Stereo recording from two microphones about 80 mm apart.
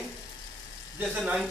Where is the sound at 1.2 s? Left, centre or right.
Centre.